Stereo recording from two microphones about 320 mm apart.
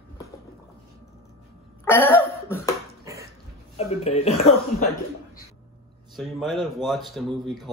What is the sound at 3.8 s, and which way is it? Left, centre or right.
Speech, centre.